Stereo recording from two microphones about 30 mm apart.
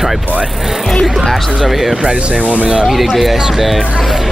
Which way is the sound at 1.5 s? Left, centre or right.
Centre.